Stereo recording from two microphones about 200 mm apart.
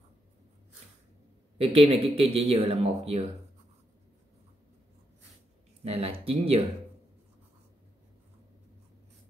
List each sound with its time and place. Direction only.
1.6 s speech: 30° right (ahead or behind)
5.9 s speech: 30° right (ahead or behind)